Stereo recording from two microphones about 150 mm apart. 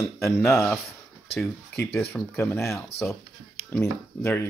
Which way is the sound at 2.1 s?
15° left (ahead or behind).